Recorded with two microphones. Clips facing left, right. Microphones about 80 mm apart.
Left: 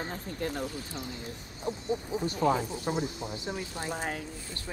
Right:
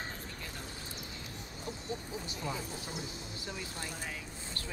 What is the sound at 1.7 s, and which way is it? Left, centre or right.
Speech, left.